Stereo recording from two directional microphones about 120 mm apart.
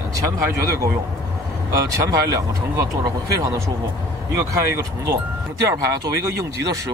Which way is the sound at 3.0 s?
35° right (ahead or behind).